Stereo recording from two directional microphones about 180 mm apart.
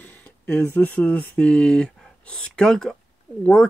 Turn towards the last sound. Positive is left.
turn(degrees=5)  # may be behind; listen again after turning